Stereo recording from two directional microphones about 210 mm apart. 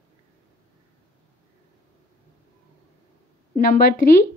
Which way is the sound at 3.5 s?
45° left (ahead or behind).